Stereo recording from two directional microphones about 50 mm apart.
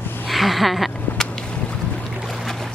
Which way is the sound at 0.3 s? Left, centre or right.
Centre.